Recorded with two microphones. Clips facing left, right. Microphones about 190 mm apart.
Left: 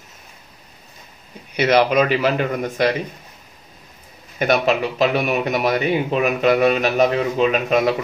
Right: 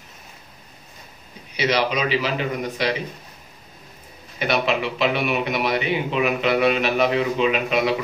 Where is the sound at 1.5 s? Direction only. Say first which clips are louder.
Left 6 dB; 55° left (ahead or behind).